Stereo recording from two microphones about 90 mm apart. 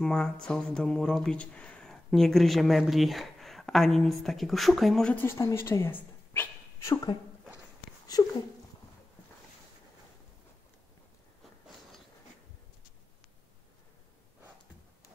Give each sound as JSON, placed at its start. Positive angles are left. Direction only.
{"t": 0.0, "sound": "speech", "side_deg": 10}
{"t": 5.1, "sound": "a woman's voice", "side_deg": 25}
{"t": 6.8, "sound": "speech", "side_deg": 35}
{"t": 8.1, "sound": "speech", "side_deg": 45}